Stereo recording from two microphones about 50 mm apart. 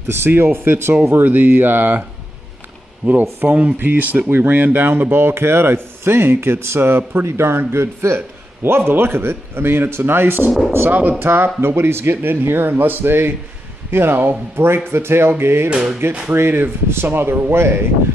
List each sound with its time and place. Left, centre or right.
0.0 s speech: right
1.0 s speech: right
3.1 s speech: right
5.1 s speech: right
7.2 s speech: right
16.3 s speech: right